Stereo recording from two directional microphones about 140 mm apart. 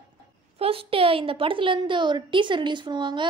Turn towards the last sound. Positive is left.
turn(degrees=-35)  # may be behind; listen again after turning